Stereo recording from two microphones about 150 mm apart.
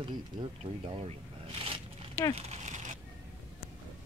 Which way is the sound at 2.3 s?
50° right (ahead or behind).